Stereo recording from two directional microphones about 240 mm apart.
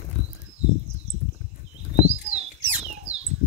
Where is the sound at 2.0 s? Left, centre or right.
Right.